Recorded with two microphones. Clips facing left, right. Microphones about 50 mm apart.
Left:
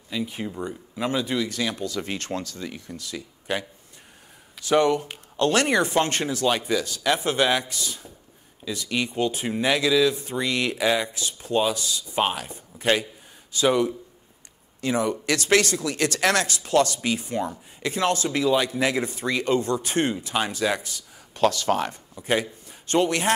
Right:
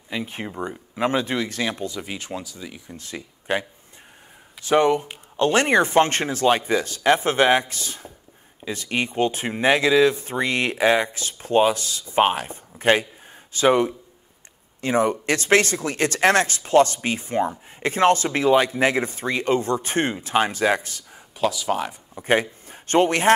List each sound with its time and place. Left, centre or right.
0.1 s speech: right
2.0 s speech: centre
3.0 s speech: right
21.4 s speech: centre
22.1 s a man's voice: right